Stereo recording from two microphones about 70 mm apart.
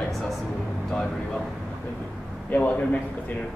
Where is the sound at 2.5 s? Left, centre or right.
Left.